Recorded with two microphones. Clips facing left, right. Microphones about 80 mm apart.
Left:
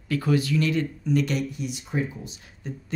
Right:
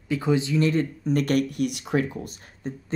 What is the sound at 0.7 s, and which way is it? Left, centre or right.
Speech, right.